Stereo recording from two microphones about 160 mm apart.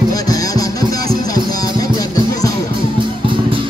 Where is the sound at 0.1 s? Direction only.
20° left (ahead or behind).